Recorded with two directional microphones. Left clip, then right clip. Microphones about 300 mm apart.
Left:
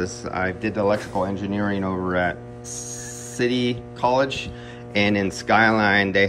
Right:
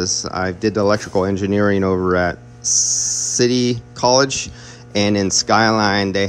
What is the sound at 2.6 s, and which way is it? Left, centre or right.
Mains hum, right.